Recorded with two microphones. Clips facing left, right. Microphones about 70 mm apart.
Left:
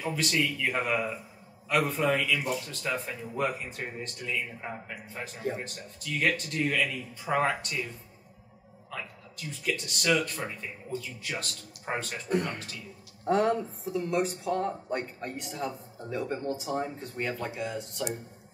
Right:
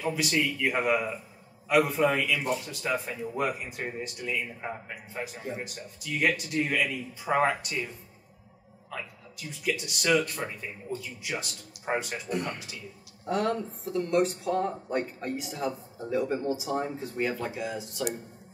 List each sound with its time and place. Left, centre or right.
0.1 s speech: centre
9.5 s speech: centre
13.3 s speech: left
13.7 s speech: centre